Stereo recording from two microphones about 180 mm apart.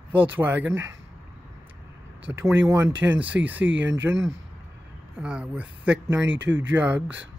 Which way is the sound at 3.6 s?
90° right.